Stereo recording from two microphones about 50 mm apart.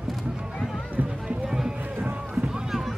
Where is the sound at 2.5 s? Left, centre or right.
Centre.